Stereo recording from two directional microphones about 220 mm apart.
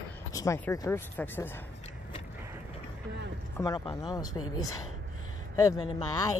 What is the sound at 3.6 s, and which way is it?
Speech, 15° left (ahead or behind).